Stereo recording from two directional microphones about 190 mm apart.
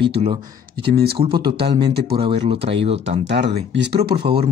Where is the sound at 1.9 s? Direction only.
60° right (ahead or behind).